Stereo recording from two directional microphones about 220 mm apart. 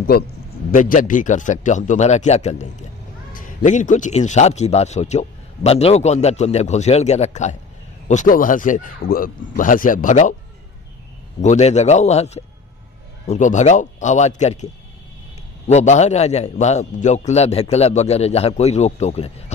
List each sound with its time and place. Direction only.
0.7 s a man's voice: 40° left (ahead or behind)
11.4 s a man's voice: 30° left (ahead or behind)
15.7 s a man's voice: 30° left (ahead or behind)